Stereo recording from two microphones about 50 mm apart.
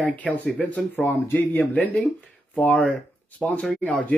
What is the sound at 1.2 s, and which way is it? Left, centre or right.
Speech, left.